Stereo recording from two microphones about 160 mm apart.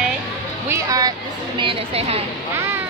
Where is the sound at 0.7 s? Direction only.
20° right (ahead or behind).